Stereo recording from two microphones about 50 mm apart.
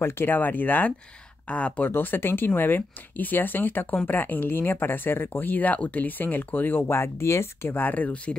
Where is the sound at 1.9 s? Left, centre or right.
Left.